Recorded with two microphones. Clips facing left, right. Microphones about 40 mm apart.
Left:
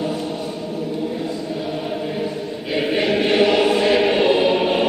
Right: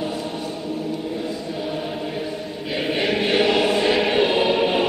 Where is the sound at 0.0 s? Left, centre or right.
Centre.